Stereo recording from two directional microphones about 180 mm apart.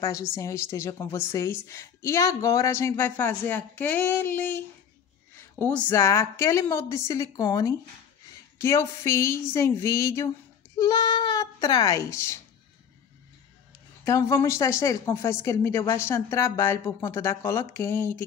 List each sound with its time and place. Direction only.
0.0 s a woman's voice: 15° left (ahead or behind)
5.6 s a woman's voice: 15° left (ahead or behind)
14.0 s a woman's voice: 15° left (ahead or behind)